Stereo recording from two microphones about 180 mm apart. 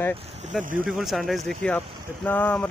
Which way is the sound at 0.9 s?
Centre (ahead or behind).